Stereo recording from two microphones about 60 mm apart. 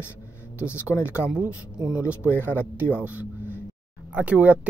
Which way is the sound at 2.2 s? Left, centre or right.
Left.